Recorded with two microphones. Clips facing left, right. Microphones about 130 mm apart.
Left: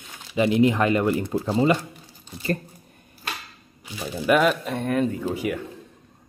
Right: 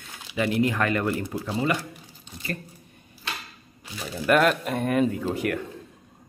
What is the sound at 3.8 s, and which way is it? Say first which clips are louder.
Speech: left 2 dB; 5° left (ahead or behind).